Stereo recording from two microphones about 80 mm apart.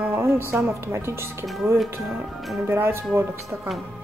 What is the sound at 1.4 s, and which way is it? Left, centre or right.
Speech, centre.